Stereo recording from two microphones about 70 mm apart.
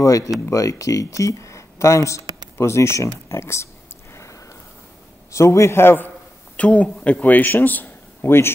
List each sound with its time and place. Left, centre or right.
0.0 s speech: left
4.1 s a sound: left
5.3 s a man's voice: left